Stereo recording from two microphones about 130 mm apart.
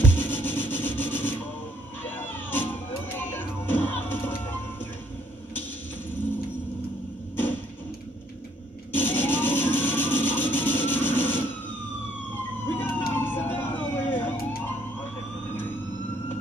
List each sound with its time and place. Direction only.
0.1 s music: 15° left (ahead or behind)
8.9 s a sound: 15° left (ahead or behind)
12.6 s emergency vehicle: 15° left (ahead or behind)